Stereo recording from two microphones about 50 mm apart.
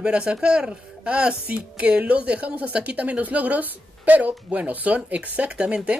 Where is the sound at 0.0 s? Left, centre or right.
Centre.